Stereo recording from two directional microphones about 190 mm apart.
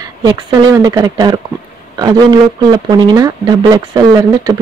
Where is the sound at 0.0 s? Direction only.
20° right (ahead or behind).